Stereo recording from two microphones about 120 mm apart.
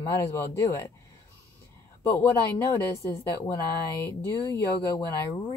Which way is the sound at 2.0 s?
15° left (ahead or behind).